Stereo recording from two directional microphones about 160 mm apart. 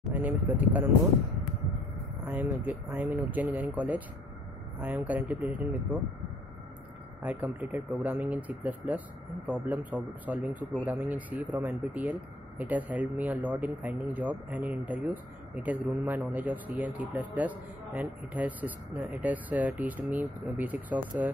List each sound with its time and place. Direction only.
0.1 s a man's voice: 10° right (ahead or behind)
2.2 s a man's voice: 10° right (ahead or behind)
7.2 s a man's voice: 10° right (ahead or behind)